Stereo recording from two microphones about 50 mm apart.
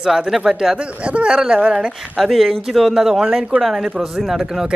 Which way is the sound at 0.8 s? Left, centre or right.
Right.